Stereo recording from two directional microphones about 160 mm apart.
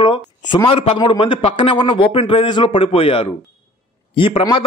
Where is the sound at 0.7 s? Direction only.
35° left (ahead or behind).